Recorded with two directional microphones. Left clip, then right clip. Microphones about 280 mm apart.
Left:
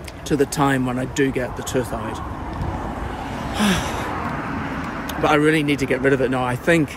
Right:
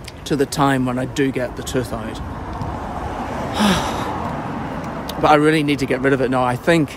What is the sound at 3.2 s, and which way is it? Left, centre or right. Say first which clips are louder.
Gasp: right 4 dB; right.